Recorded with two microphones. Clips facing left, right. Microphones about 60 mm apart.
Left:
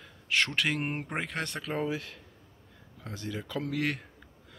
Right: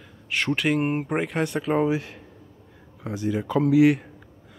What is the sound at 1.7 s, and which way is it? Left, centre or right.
Speech, right.